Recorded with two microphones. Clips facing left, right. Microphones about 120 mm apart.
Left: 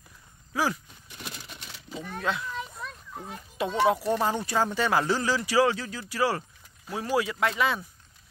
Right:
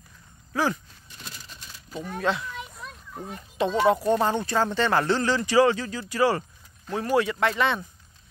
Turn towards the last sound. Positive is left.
turn(degrees=5)  # may be behind; listen again after turning